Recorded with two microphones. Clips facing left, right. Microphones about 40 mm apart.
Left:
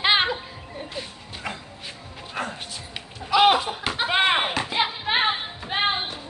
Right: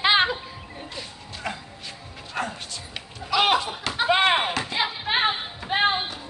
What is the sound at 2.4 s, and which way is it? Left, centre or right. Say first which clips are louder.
Speech: right 1 dB; centre.